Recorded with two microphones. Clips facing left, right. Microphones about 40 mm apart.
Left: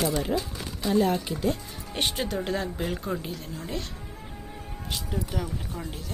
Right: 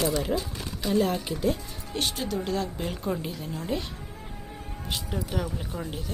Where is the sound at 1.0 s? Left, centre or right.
Centre.